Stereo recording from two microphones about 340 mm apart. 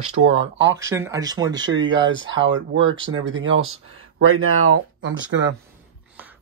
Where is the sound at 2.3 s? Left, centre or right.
Right.